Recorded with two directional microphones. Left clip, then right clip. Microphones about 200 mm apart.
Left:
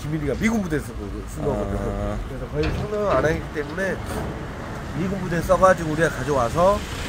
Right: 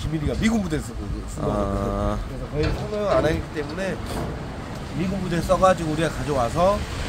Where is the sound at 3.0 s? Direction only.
5° left (ahead or behind).